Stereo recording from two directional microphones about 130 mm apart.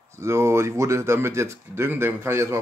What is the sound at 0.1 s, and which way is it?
Speech, 20° right (ahead or behind).